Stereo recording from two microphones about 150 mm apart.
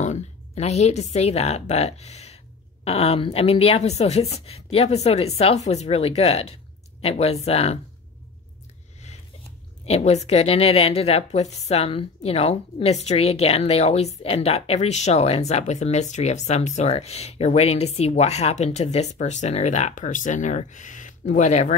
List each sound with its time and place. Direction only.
0.0 s a woman's voice: 50° left (ahead or behind)
9.8 s a woman's voice: 45° left (ahead or behind)